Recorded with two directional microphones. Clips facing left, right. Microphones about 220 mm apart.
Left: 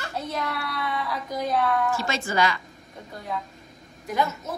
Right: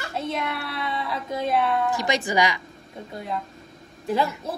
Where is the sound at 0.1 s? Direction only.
25° right (ahead or behind).